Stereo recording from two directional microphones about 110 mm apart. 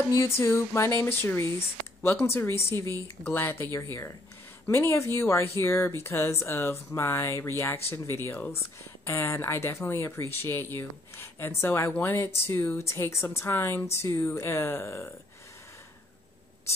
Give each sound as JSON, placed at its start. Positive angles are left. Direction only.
{"t": 0.1, "sound": "speech", "side_deg": 25}